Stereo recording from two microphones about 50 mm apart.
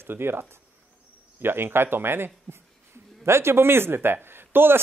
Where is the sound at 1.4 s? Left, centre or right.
Right.